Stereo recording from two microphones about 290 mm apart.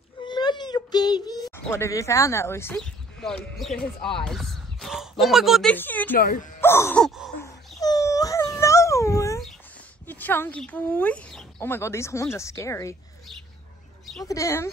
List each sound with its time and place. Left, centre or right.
0.2 s a sound: centre
5.2 s speech: centre
6.1 s speech: left
6.6 s music: centre
7.8 s wail: centre
10.0 s a woman's voice: centre
14.2 s a woman's voice: centre